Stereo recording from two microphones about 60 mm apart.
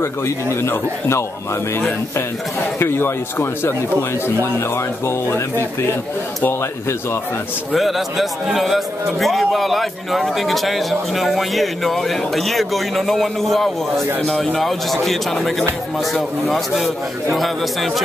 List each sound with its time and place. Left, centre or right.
0.0 s a man's voice: left
7.7 s a man's voice: centre